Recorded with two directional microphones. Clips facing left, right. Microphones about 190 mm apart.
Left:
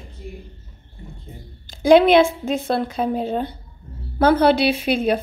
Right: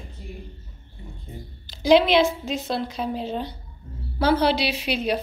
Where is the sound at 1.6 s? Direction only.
50° left (ahead or behind).